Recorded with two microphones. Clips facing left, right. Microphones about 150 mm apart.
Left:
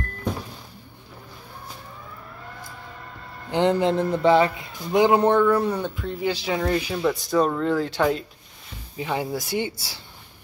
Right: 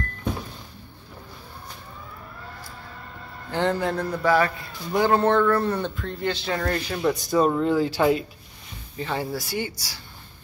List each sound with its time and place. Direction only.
3.4 s a man's voice: 20° left (ahead or behind); by 8.3 s 5° right (ahead or behind)
8.9 s speech: 15° left (ahead or behind)